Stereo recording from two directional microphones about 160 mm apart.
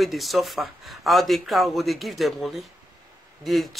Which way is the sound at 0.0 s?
Centre (ahead or behind).